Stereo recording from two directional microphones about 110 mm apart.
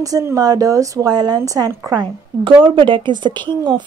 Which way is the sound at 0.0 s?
30° right (ahead or behind).